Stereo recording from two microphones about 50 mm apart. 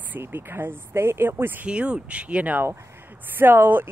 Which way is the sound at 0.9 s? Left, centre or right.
Right.